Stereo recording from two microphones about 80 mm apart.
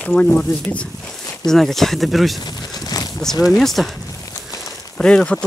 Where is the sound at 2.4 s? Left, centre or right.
Left.